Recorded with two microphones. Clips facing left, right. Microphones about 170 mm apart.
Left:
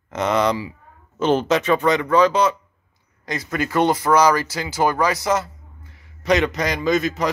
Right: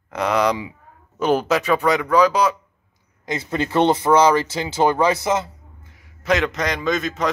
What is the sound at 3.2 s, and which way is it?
Speech, 25° right (ahead or behind).